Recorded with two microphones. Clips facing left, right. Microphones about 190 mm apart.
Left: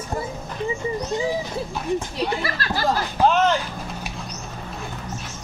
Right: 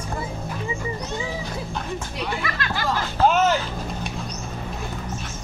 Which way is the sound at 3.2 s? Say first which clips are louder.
Even; 15° left (ahead or behind).